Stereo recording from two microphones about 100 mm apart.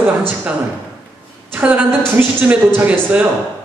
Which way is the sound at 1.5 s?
15° right (ahead or behind).